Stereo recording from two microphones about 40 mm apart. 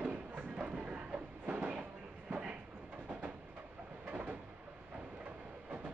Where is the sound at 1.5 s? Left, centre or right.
Right.